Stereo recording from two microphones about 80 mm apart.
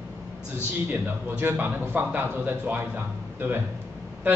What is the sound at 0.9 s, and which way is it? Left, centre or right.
A man's voice, right.